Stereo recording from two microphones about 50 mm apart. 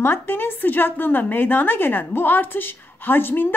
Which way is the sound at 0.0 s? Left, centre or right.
Left.